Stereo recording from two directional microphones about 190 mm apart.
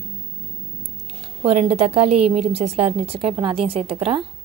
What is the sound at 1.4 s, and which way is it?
A woman's voice, 35° right (ahead or behind).